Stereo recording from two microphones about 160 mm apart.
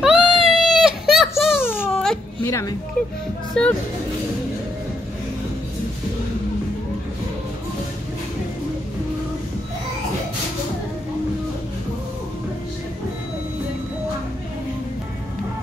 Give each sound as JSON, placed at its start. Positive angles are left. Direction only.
{"t": 0.0, "sound": "baby cry", "side_deg": -5}
{"t": 1.4, "sound": "whimper", "side_deg": -5}
{"t": 1.9, "sound": "baby cry", "side_deg": 5}
{"t": 2.4, "sound": "music", "side_deg": 20}
{"t": 3.6, "sound": "speech", "side_deg": 5}